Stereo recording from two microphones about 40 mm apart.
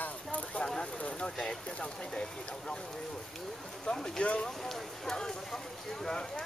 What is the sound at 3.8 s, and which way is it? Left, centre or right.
Speech, centre.